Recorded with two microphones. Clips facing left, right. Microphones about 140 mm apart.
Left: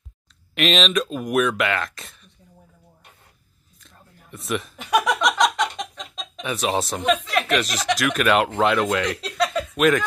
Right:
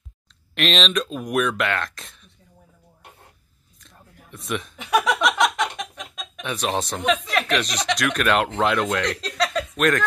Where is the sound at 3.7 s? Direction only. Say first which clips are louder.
Right 1 dB; centre (ahead or behind); by 6.4 s 20° left (ahead or behind).